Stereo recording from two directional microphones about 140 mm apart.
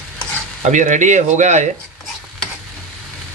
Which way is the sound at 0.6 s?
60° right (ahead or behind).